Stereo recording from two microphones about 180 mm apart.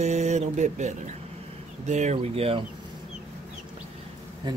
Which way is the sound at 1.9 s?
40° right (ahead or behind).